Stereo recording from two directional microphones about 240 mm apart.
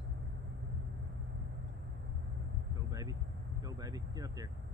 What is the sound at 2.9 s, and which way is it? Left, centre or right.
Vehicle, centre.